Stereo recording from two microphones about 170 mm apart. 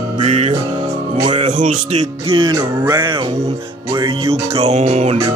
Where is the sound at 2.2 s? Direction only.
25° right (ahead or behind).